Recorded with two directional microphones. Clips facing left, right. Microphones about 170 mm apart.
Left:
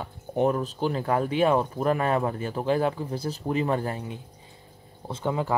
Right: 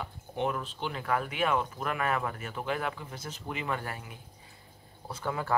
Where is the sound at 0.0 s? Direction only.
40° left (ahead or behind).